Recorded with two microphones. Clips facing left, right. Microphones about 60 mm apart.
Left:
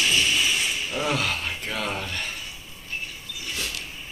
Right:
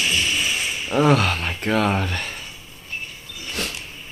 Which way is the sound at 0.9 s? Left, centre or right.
Right.